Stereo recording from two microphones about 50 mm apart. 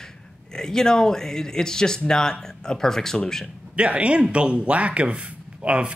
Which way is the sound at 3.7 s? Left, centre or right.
Right.